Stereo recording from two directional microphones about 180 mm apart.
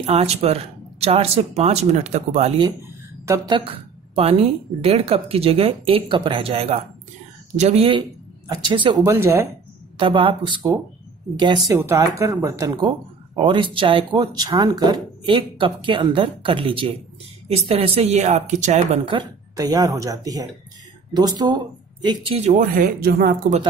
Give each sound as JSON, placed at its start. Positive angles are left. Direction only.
{"t": 0.0, "sound": "a woman's voice", "side_deg": -35}
{"t": 3.3, "sound": "a woman's voice", "side_deg": -20}
{"t": 9.9, "sound": "a woman's voice", "side_deg": -30}
{"t": 19.0, "sound": "a woman's voice", "side_deg": -25}
{"t": 22.5, "sound": "speech", "side_deg": -50}